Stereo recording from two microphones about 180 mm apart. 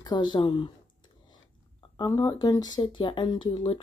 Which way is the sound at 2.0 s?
20° left (ahead or behind).